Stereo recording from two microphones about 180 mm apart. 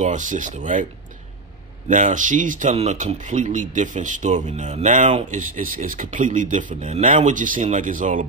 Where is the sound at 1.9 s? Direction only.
45° right (ahead or behind).